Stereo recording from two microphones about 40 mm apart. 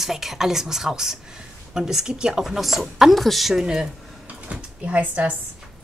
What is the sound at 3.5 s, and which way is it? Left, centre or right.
Speech, centre.